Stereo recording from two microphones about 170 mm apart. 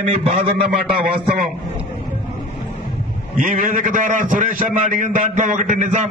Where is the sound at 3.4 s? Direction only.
55° right (ahead or behind).